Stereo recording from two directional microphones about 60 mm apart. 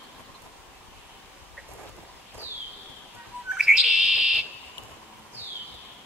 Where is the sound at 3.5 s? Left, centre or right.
Centre.